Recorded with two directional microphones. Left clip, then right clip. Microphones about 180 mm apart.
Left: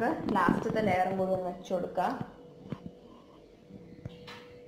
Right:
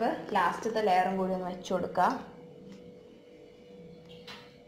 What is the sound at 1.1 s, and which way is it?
Speech, 70° right (ahead or behind).